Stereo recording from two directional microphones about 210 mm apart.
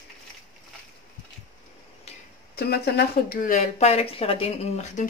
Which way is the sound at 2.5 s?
50° left (ahead or behind).